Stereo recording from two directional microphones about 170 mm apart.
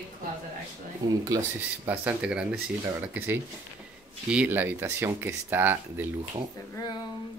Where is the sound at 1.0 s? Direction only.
20° right (ahead or behind).